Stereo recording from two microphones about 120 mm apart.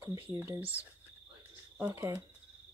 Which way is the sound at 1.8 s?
25° right (ahead or behind).